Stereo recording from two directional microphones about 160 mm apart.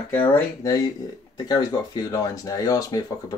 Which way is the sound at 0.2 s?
25° left (ahead or behind).